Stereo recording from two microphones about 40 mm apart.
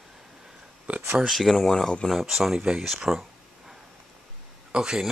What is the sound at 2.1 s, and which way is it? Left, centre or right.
Speech, centre.